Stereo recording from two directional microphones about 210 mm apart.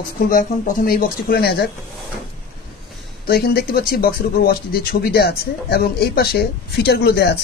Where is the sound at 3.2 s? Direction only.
45° left (ahead or behind).